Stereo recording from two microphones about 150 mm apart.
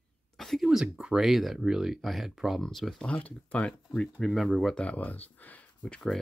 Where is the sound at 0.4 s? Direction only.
Centre (ahead or behind).